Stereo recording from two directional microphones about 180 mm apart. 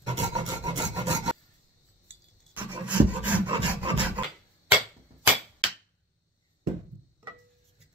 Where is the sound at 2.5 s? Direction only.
10° right (ahead or behind).